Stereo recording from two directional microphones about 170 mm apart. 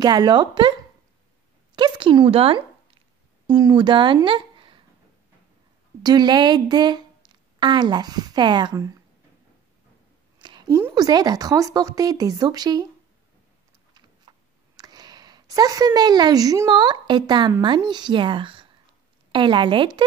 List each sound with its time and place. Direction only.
0.0 s a woman's voice: 25° right (ahead or behind)
1.8 s a woman's voice: 30° right (ahead or behind)
6.0 s a woman's voice: 25° right (ahead or behind)
10.4 s a sound: 25° right (ahead or behind)
11.0 s a woman's voice: 25° right (ahead or behind)
14.3 s a sound: 30° right (ahead or behind)
14.8 s a woman's voice: 25° right (ahead or behind)